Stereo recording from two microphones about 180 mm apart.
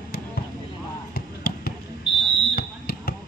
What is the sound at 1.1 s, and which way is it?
Basketball bounce, 55° left (ahead or behind).